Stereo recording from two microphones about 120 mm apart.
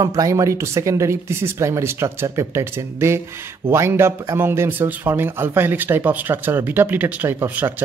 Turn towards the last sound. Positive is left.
turn(degrees=-15)  # may be behind; listen again after turning